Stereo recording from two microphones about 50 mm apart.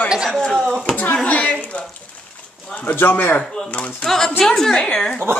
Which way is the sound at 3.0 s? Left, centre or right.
Left.